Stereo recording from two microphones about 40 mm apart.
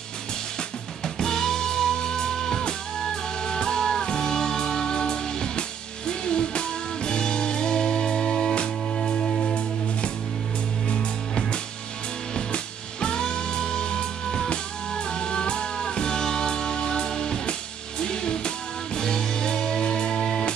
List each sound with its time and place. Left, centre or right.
0.6 s music: centre
10.9 s music: left